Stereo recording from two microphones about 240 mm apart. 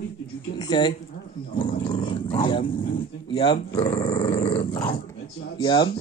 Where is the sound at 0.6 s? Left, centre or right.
Centre.